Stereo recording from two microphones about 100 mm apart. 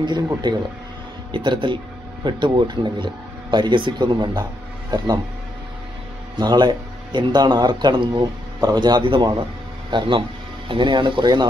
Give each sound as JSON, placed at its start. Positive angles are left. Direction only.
{"t": 0.0, "sound": "speech", "side_deg": -50}
{"t": 6.3, "sound": "speech", "side_deg": -45}